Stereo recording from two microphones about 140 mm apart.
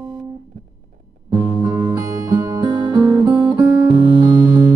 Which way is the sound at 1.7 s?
35° right (ahead or behind).